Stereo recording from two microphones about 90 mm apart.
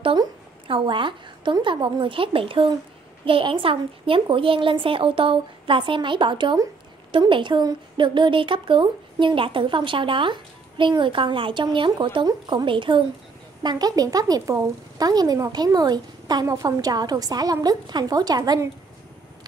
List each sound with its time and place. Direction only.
0.7 s a woman's voice: 65° right (ahead or behind)
12.3 s a woman's voice: 50° right (ahead or behind)
12.6 s a woman's voice: 65° right (ahead or behind)
13.6 s a woman's voice: 50° right (ahead or behind)